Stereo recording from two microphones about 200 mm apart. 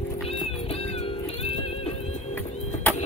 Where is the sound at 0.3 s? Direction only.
30° left (ahead or behind).